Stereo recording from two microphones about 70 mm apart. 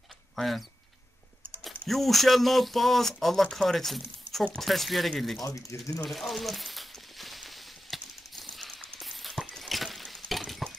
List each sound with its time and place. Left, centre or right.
0.4 s speech: centre
5.4 s speech: left
6.0 s a sound: centre
9.4 s breaking: centre